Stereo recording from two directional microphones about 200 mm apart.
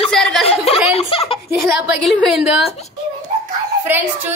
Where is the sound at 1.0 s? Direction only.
30° left (ahead or behind).